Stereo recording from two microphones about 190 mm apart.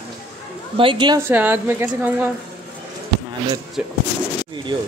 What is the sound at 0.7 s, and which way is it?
Speech, 25° right (ahead or behind).